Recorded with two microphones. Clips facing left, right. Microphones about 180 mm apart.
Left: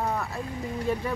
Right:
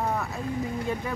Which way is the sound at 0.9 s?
Centre (ahead or behind).